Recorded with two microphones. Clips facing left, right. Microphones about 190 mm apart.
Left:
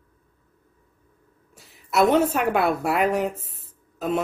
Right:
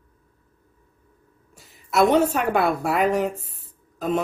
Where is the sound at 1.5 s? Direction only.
Centre (ahead or behind).